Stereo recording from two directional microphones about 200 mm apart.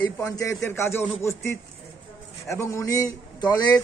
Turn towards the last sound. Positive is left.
turn(degrees=20)  # may be behind; listen again after turning